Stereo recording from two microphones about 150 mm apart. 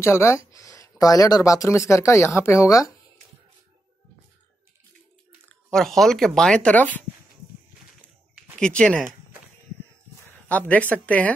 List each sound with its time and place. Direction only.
0.0 s speech: 15° left (ahead or behind)
5.5 s speech: 5° left (ahead or behind)
8.5 s speech: 5° left (ahead or behind)
10.5 s speech: 10° left (ahead or behind)